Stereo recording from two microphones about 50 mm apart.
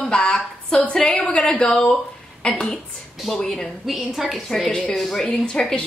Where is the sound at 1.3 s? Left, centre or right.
Left.